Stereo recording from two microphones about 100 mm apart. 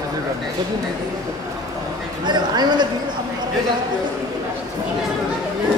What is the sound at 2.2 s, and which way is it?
Speech, 45° right (ahead or behind).